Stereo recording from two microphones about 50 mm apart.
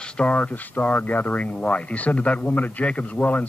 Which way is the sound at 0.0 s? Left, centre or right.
Left.